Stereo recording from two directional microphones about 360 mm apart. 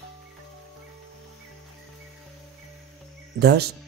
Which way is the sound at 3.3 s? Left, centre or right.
Right.